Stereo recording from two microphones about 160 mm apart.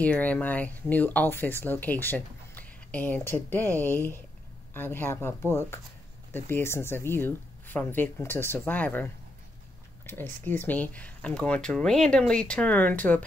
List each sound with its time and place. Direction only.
0.0 s speech: 10° left (ahead or behind)